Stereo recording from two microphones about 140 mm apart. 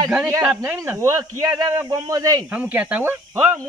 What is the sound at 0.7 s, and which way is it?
Speech, 20° right (ahead or behind).